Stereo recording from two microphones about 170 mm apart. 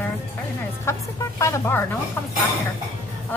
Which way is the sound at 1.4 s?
15° left (ahead or behind).